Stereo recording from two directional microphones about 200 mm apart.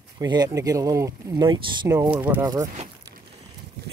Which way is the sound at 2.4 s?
20° right (ahead or behind).